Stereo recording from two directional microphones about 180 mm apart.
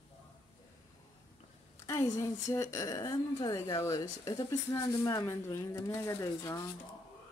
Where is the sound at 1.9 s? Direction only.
15° left (ahead or behind).